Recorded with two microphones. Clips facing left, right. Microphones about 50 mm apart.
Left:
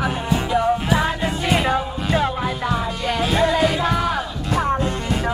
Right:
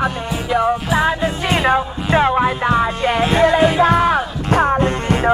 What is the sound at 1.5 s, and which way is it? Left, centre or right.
Music, right.